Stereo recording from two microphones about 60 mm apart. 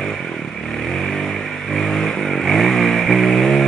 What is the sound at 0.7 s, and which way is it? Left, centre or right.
Motorcycle, centre.